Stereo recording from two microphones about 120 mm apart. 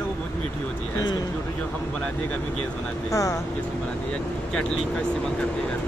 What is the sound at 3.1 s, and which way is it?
Speech, 25° left (ahead or behind).